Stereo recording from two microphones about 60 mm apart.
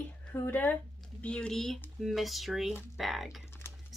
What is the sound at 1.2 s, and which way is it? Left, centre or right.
Speech, centre.